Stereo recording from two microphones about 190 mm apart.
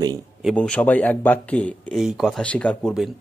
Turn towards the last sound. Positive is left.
turn(degrees=0)  # may be behind; listen again after turning